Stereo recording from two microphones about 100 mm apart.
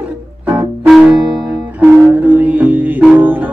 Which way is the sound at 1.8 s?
15° right (ahead or behind).